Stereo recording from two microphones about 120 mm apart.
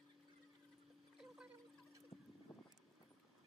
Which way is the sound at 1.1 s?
5° right (ahead or behind).